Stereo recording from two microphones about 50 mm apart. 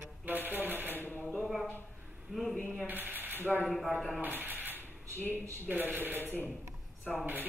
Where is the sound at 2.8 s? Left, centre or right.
Right.